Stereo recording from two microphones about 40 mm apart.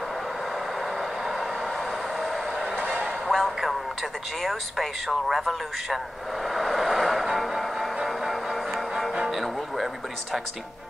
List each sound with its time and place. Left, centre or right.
2.6 s a sound: right
3.3 s music: centre
4.4 s speech: centre
6.5 s vehicle: centre
8.3 s music: centre